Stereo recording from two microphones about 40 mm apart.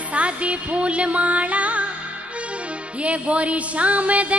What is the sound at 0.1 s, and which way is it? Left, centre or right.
Music, right.